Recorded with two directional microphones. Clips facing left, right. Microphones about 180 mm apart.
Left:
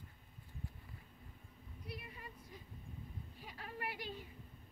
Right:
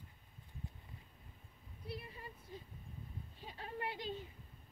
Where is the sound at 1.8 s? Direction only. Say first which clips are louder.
Right 3 dB; 30° right (ahead or behind).